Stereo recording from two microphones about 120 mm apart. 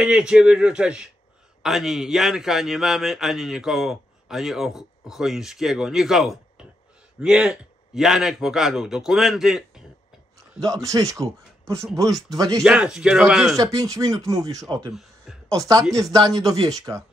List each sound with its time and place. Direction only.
0.0 s a man's voice: 5° right (ahead or behind)
10.6 s speech: 30° right (ahead or behind)
12.6 s a man's voice: 5° right (ahead or behind)
13.6 s speech: 30° right (ahead or behind)
14.9 s a sound: centre (ahead or behind)
15.4 s speech: 25° right (ahead or behind)